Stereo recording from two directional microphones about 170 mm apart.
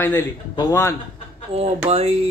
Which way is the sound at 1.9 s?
40° right (ahead or behind).